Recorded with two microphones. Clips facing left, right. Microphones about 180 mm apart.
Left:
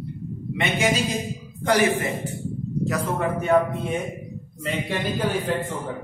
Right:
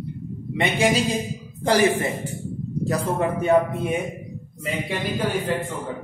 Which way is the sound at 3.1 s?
15° right (ahead or behind).